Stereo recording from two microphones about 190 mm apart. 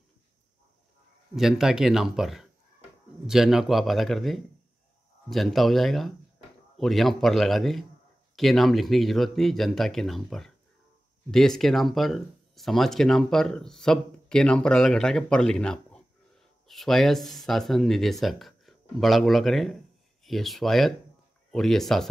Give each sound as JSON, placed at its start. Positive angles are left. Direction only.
{"t": 1.3, "sound": "speech", "side_deg": 0}